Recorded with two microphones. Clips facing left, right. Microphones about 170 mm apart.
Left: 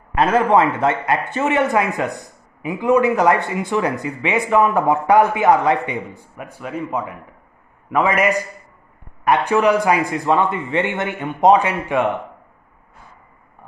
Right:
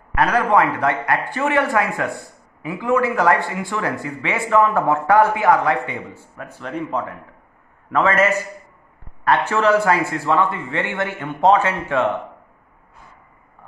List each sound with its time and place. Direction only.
0.1 s a man's voice: 25° left (ahead or behind)